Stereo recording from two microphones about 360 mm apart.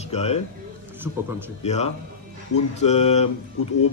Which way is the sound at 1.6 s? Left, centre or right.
Centre.